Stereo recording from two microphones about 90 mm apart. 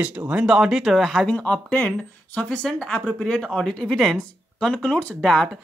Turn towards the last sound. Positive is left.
turn(degrees=5)  # may be behind; listen again after turning